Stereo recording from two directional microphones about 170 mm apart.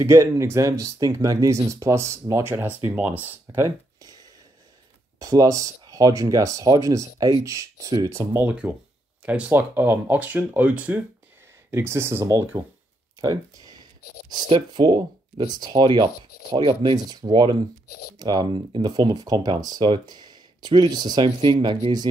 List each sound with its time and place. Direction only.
0.0 s speech: 15° right (ahead or behind)
13.2 s a sound: 25° right (ahead or behind)
14.3 s speech: 25° right (ahead or behind)
17.8 s speech: 65° left (ahead or behind)
18.2 s speech: 25° right (ahead or behind)